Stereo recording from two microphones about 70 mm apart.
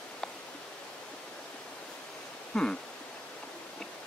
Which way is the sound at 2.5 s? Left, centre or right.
Centre.